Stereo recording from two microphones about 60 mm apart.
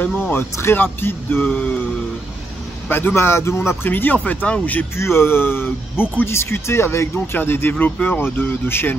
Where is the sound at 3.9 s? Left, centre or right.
Left.